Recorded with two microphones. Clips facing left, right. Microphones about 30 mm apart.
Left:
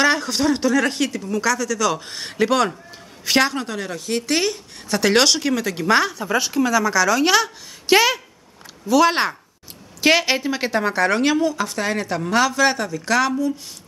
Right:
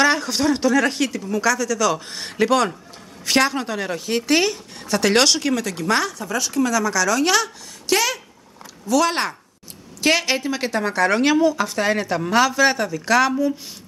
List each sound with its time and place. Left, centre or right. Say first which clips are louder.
0.0 s a woman's voice: even; centre
7.8 s speech: left 5 dB; left
8.8 s a woman's voice: left 3 dB; centre